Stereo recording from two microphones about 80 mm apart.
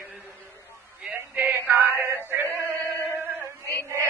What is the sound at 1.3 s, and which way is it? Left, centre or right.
Male singing, right.